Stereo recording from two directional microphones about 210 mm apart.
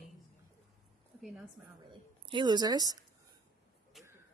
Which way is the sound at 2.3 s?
20° right (ahead or behind).